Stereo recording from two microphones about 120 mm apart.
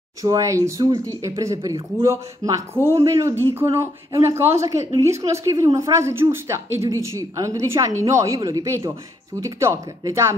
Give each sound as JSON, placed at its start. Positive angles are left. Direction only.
{"t": 0.2, "sound": "a woman's voice", "side_deg": -25}